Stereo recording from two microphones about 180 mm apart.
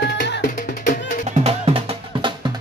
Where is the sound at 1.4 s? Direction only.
35° right (ahead or behind).